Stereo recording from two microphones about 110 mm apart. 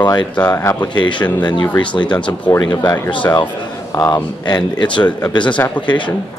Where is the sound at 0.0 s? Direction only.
40° left (ahead or behind).